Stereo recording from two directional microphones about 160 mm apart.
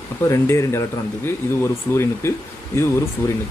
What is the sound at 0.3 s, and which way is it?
Speech, 15° left (ahead or behind).